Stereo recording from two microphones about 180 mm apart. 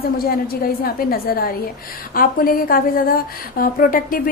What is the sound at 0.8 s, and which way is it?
A woman's voice, 55° left (ahead or behind).